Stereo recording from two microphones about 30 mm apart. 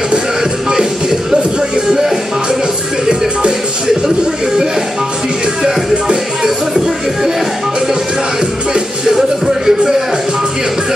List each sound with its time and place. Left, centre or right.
1.9 s music: centre
3.1 s music: right
9.7 s a sound: centre